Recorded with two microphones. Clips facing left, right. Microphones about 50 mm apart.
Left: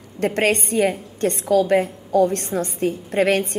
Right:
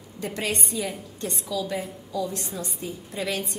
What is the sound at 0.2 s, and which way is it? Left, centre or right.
A woman's voice, left.